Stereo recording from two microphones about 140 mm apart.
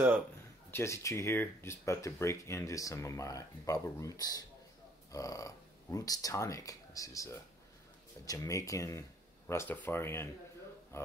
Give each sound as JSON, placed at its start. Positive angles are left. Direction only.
{"t": 0.7, "sound": "speech", "side_deg": 20}